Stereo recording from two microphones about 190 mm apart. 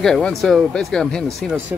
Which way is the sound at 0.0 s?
Centre (ahead or behind).